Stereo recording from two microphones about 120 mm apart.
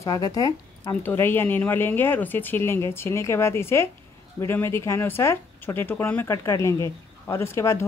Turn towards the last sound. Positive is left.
turn(degrees=20)  # may be behind; listen again after turning